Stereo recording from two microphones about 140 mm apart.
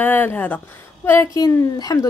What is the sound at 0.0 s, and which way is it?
A woman's voice, 15° left (ahead or behind).